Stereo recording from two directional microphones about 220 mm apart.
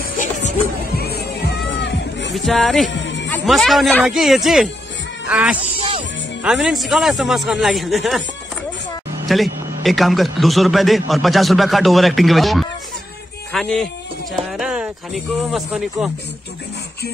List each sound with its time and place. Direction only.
0.9 s music: 45° left (ahead or behind)
2.3 s a man's voice: centre (ahead or behind)
9.3 s a man's voice: centre (ahead or behind)